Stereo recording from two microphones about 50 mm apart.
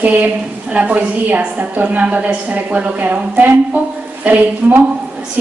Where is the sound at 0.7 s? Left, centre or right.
Right.